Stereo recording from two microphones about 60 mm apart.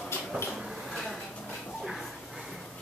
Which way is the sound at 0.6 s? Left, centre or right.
Centre.